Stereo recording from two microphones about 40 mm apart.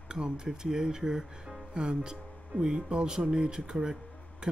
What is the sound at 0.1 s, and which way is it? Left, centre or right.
Speech, centre.